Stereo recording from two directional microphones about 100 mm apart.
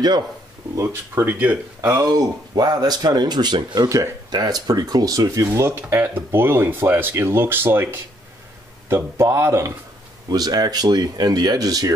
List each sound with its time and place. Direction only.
0.7 s speech: 25° right (ahead or behind)
1.8 s speech: 35° right (ahead or behind)
5.7 s speech: 20° right (ahead or behind)
10.3 s speech: 40° right (ahead or behind)